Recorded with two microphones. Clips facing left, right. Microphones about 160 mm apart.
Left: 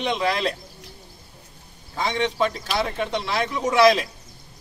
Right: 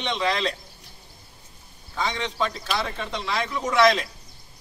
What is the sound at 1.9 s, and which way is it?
Speech, 30° left (ahead or behind).